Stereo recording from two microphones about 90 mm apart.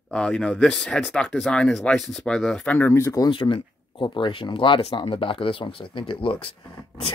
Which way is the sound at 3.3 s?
65° left (ahead or behind).